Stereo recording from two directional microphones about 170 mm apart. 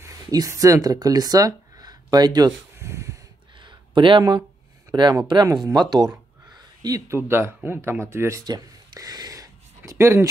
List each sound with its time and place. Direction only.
0.0 s speech: 20° right (ahead or behind)
3.5 s a sound: 30° right (ahead or behind)
4.9 s speech: 25° right (ahead or behind)